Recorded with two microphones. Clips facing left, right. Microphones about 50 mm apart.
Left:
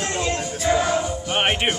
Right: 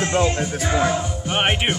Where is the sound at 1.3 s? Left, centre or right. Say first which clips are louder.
Right 1 dB; centre.